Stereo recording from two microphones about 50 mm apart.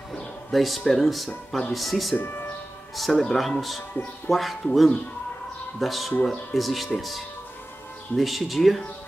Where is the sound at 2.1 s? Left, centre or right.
Left.